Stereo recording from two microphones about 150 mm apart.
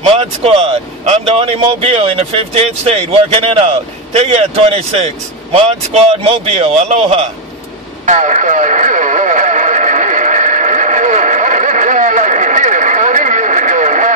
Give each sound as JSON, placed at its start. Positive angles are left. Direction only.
{"t": 0.0, "sound": "speech", "side_deg": -40}
{"t": 8.0, "sound": "radio", "side_deg": -55}